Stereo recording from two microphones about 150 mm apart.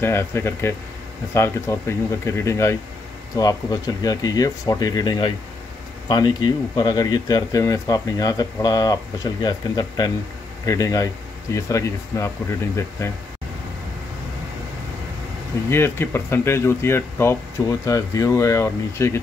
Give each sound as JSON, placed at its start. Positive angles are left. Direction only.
{"t": 0.0, "sound": "speech", "side_deg": 15}
{"t": 15.7, "sound": "speech", "side_deg": 15}